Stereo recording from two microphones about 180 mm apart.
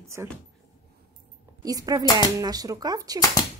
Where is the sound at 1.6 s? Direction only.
20° right (ahead or behind).